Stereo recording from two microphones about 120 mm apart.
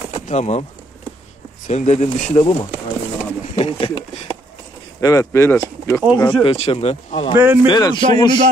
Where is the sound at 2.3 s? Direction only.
45° left (ahead or behind).